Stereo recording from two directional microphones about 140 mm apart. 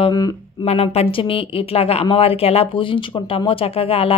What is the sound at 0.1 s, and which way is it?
Speech, 25° left (ahead or behind).